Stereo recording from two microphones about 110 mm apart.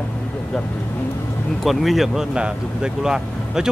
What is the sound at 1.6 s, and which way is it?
Speech, centre (ahead or behind).